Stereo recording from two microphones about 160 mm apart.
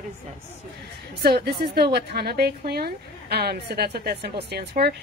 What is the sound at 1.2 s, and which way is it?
A woman's voice, 75° right (ahead or behind).